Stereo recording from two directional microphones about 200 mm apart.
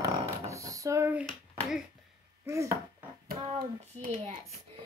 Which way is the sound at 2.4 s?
15° right (ahead or behind).